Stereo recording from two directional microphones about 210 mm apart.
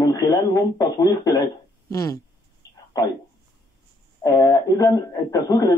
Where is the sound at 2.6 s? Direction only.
20° left (ahead or behind).